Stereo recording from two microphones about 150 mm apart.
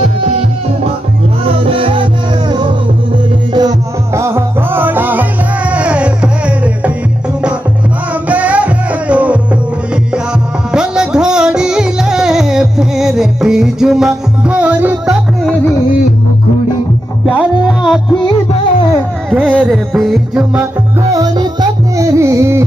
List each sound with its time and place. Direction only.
1.6 s music: 35° right (ahead or behind)
3.5 s music: 20° right (ahead or behind)
8.3 s music: 10° right (ahead or behind)
10.7 s music: 5° right (ahead or behind)
17.3 s music: 5° right (ahead or behind)
19.3 s music: 10° right (ahead or behind)
21.1 s music: 25° right (ahead or behind)